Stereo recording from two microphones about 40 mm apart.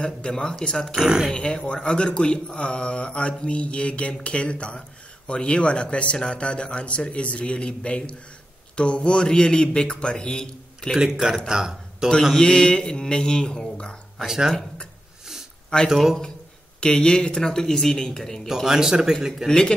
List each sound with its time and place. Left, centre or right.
0.0 s speech: left
0.9 s speech: centre
1.3 s speech: left
11.1 s speech: centre
12.4 s speech: left
14.2 s speech: centre
15.9 s speech: centre
16.8 s speech: left
18.5 s speech: centre